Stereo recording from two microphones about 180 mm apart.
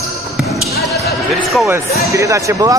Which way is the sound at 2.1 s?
15° right (ahead or behind).